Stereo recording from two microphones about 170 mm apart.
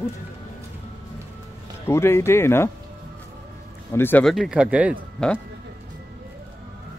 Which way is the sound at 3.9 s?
15° left (ahead or behind).